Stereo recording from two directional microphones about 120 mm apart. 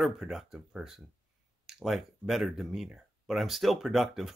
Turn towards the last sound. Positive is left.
turn(degrees=0)  # may be behind; listen again after turning